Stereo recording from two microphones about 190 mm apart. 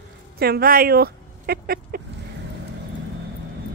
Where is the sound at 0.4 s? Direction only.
55° right (ahead or behind).